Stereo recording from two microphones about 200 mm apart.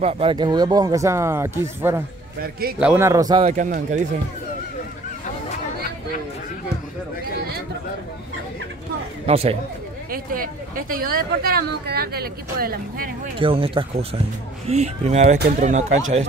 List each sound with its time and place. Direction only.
0.0 s speech: 30° right (ahead or behind)
3.4 s speech: 40° right (ahead or behind)
9.2 s speech: 30° right (ahead or behind)
10.1 s a woman's voice: 45° right (ahead or behind)
13.4 s speech: 25° right (ahead or behind)